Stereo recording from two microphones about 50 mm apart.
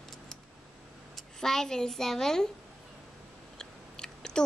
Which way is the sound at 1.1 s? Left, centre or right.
Centre.